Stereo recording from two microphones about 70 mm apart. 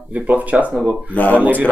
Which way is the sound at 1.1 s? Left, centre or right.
Left.